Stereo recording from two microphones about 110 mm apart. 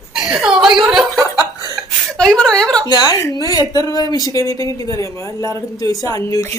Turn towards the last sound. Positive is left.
turn(degrees=30)  # may be behind; listen again after turning